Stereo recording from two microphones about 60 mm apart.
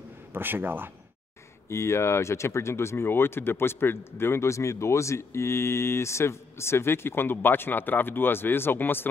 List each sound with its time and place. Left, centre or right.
0.3 s a man's voice: right
1.7 s speech: left